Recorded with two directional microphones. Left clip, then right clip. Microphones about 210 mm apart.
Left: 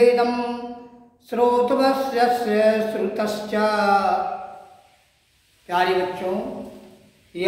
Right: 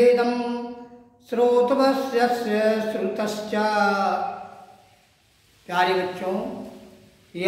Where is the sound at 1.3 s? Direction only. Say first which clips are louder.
Even; centre (ahead or behind).